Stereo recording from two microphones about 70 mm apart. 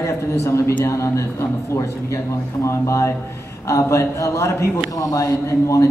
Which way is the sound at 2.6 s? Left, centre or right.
Left.